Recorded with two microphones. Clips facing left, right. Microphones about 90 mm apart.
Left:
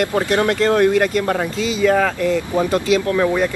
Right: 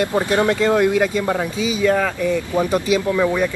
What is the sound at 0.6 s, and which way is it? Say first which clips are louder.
Speech: left 4 dB; 15° right (ahead or behind).